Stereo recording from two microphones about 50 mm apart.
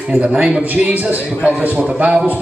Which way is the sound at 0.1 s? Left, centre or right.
Centre.